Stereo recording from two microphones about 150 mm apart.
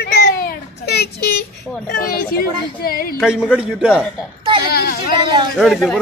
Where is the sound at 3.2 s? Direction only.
5° right (ahead or behind).